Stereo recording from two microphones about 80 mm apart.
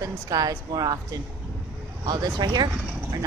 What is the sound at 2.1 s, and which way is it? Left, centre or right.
Speech, right.